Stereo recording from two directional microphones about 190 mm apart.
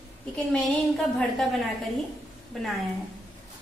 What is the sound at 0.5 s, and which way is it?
A woman's voice, centre (ahead or behind).